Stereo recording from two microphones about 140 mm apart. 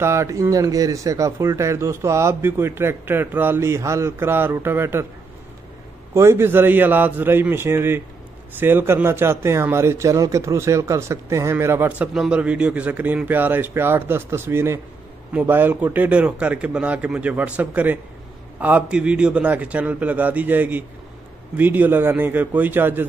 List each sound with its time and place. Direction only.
0.0 s speech: 20° right (ahead or behind)
6.1 s speech: 20° right (ahead or behind)
12.1 s speech: 5° right (ahead or behind)